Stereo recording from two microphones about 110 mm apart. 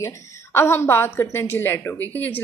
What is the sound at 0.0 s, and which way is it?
A woman's voice, 20° left (ahead or behind).